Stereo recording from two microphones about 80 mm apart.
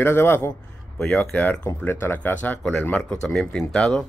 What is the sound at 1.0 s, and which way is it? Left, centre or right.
Speech, centre.